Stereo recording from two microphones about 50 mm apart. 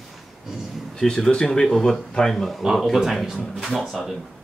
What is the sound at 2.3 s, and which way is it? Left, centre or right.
Speech, centre.